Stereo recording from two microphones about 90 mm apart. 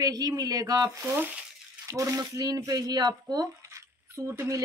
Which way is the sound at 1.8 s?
35° right (ahead or behind).